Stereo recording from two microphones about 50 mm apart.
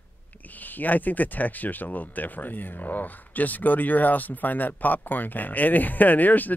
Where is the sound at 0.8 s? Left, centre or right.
Left.